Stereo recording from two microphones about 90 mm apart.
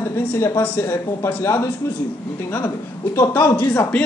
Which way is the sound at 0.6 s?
20° left (ahead or behind).